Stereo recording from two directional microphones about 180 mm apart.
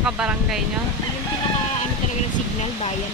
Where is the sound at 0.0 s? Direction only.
5° right (ahead or behind).